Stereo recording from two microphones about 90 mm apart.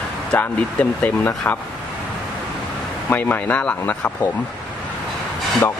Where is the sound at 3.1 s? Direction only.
20° left (ahead or behind).